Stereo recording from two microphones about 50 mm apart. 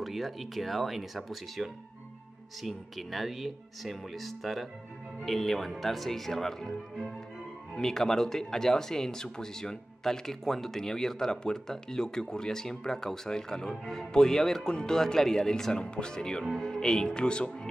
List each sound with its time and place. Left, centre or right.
0.0 s speech: centre
7.7 s speech: centre